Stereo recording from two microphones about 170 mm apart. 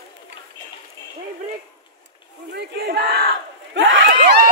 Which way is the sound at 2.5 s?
70° right (ahead or behind).